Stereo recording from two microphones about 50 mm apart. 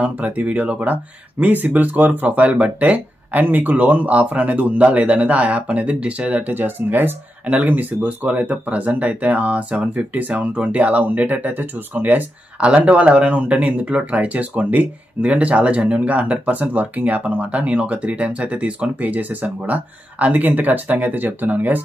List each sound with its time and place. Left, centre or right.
0.0 s speech: right
7.4 s speech: right
12.5 s speech: right